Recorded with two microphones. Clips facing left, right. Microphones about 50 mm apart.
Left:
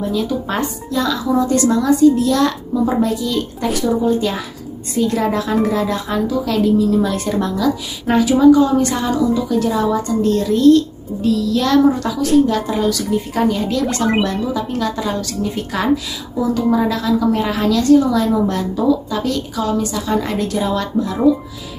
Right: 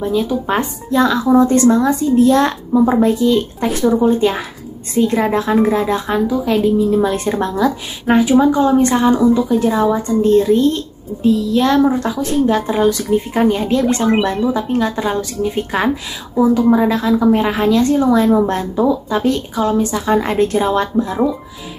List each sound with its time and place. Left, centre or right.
0.0 s a woman's voice: right